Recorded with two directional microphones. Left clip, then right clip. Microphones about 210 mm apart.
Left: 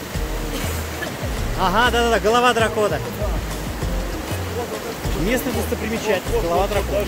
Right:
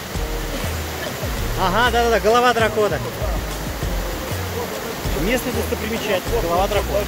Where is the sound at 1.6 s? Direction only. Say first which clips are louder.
Even; 10° left (ahead or behind).